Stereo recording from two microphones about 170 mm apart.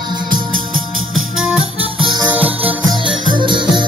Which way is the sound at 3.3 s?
30° right (ahead or behind).